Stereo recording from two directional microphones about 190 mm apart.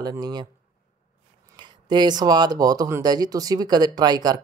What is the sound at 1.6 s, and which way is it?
Speech, 25° right (ahead or behind).